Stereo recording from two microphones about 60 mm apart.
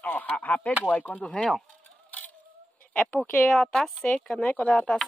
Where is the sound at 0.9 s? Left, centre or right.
Left.